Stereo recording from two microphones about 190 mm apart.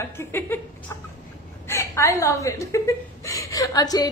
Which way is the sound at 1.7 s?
15° left (ahead or behind).